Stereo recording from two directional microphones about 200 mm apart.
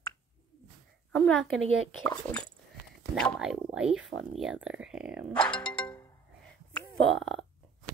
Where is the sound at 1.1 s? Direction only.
5° left (ahead or behind).